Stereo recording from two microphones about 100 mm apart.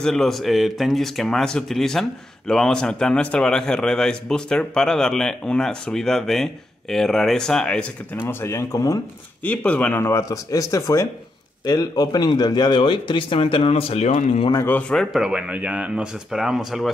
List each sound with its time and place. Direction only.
0.0 s speech: 5° left (ahead or behind)
8.2 s speech: 25° left (ahead or behind)
9.4 s speech: 15° left (ahead or behind)
10.0 s speech: 30° left (ahead or behind); by 14.5 s 80° left
14.6 s speech: 15° left (ahead or behind)
15.0 s speech: 5° right (ahead or behind)